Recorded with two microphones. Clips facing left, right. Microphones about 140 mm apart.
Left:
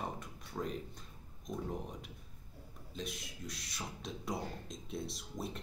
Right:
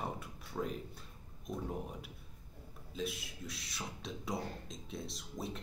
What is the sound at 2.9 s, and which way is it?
Speech, 5° right (ahead or behind).